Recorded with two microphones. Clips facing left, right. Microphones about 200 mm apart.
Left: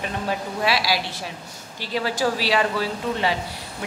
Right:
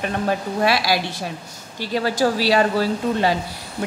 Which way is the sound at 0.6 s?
50° right (ahead or behind).